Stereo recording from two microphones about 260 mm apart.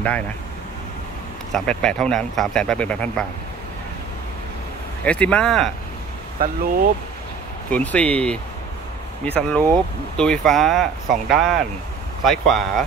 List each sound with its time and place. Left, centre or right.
1.5 s speech: centre
5.0 s speech: centre
6.4 s speech: right
7.7 s speech: centre